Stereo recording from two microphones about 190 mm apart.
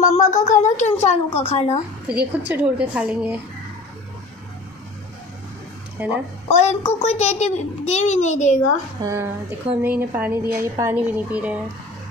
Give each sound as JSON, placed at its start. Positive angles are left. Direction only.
{"t": 0.1, "sound": "a sound", "side_deg": 40}
{"t": 0.5, "sound": "a child's voice", "side_deg": 40}
{"t": 2.0, "sound": "a woman's voice", "side_deg": -10}
{"t": 6.0, "sound": "a woman's voice", "side_deg": -10}
{"t": 6.5, "sound": "a child's voice", "side_deg": 35}
{"t": 9.0, "sound": "a woman's voice", "side_deg": -15}